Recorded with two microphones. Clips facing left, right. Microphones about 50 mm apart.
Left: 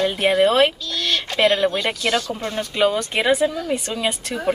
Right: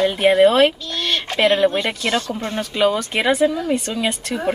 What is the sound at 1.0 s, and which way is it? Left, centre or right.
Speech, centre.